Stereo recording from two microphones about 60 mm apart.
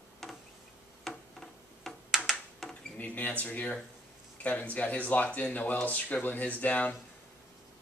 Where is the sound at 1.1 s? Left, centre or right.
Centre.